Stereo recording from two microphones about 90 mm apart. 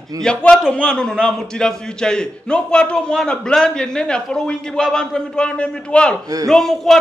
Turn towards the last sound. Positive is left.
turn(degrees=5)  # may be behind; listen again after turning